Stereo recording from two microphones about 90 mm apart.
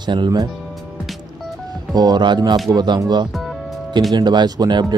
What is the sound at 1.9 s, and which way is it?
Speech, 50° right (ahead or behind).